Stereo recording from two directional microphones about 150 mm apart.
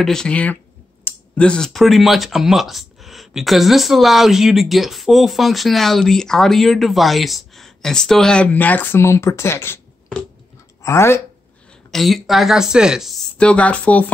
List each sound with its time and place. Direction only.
0.0 s speech: 5° left (ahead or behind)
10.8 s speech: 20° left (ahead or behind)
11.9 s speech: centre (ahead or behind)
13.4 s speech: 10° left (ahead or behind)